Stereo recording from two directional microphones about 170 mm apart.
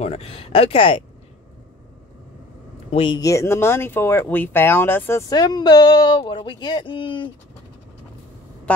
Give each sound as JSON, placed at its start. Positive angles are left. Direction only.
{"t": 0.0, "sound": "speech", "side_deg": 35}
{"t": 2.9, "sound": "speech", "side_deg": 35}
{"t": 3.2, "sound": "speech", "side_deg": 20}
{"t": 8.7, "sound": "a sound", "side_deg": 5}